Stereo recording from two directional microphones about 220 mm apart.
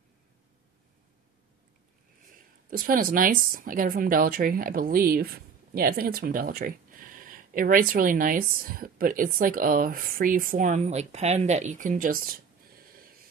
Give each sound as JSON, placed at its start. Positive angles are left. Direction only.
{"t": 2.3, "sound": "speech", "side_deg": -40}